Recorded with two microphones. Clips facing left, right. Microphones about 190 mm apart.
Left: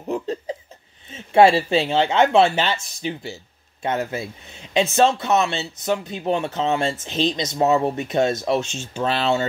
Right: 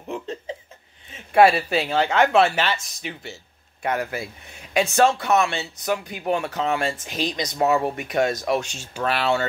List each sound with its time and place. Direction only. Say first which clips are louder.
0.0 s laughter: left 5 dB; 35° left (ahead or behind)
1.1 s speech: left 2 dB; 25° left (ahead or behind)